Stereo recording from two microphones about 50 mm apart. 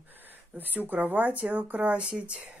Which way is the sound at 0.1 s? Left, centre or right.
Right.